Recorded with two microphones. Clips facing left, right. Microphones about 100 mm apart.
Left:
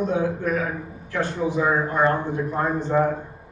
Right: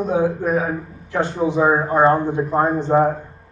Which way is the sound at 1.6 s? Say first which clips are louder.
Right 6 dB; 35° right (ahead or behind).